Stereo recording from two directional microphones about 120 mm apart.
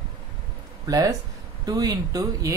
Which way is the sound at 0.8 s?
30° right (ahead or behind).